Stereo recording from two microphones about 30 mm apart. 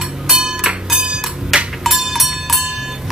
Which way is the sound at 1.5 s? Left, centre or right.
Centre.